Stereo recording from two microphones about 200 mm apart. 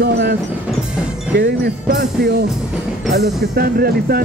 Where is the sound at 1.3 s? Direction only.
50° right (ahead or behind).